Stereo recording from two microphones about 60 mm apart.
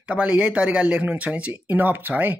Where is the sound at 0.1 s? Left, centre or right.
Centre.